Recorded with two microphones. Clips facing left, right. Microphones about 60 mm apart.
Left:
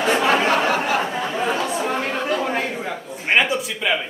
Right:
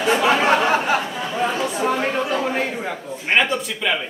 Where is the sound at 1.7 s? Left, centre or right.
Centre.